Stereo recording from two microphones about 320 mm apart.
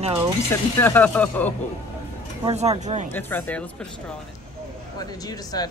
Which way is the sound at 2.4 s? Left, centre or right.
Centre.